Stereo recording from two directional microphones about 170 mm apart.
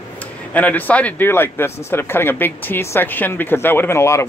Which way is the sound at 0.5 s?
10° left (ahead or behind).